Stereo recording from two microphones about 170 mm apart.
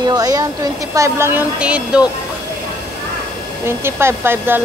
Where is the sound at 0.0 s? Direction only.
20° right (ahead or behind); by 2.0 s 5° right (ahead or behind).